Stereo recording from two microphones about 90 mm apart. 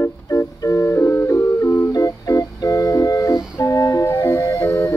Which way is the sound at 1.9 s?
40° left (ahead or behind).